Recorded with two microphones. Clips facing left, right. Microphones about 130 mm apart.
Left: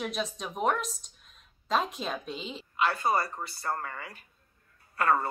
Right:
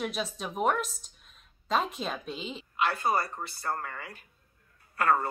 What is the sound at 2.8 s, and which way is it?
Speech, 25° left (ahead or behind).